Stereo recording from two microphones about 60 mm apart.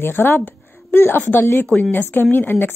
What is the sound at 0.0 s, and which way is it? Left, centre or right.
A woman's voice, left.